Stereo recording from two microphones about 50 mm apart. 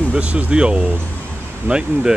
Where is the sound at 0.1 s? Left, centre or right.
Right.